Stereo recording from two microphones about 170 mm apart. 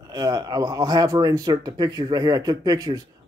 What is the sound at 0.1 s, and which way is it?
Speech, 20° right (ahead or behind).